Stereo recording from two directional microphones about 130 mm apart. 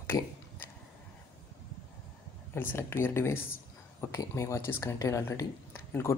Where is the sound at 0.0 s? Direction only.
15° left (ahead or behind).